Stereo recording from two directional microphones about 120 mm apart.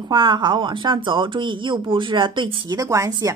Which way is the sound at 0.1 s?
45° right (ahead or behind).